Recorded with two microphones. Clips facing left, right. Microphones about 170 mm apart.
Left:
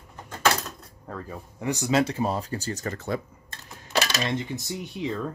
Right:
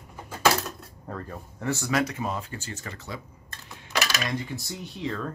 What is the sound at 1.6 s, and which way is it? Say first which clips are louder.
Speech: left 3 dB; 15° left (ahead or behind).